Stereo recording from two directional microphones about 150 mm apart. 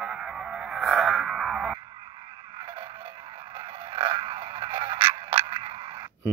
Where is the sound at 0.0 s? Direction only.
5° right (ahead or behind).